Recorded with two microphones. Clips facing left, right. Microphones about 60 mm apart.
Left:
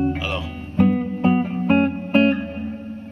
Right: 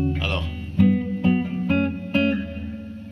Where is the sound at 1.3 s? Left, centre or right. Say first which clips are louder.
Left 4 dB; left.